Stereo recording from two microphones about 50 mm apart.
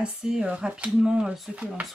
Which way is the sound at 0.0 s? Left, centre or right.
Centre.